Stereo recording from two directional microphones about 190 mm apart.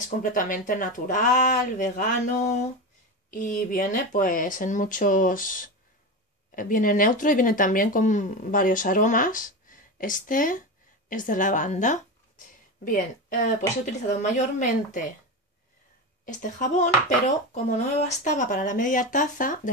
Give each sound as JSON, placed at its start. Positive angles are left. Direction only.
{"t": 0.2, "sound": "speech", "side_deg": 45}
{"t": 16.3, "sound": "speech", "side_deg": 45}